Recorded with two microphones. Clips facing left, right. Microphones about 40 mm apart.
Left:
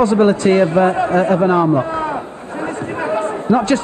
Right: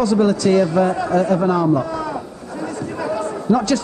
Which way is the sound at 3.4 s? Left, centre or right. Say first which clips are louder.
Left 2 dB; left.